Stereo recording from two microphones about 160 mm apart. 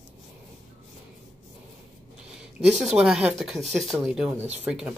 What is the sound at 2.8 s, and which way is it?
Speech, centre (ahead or behind).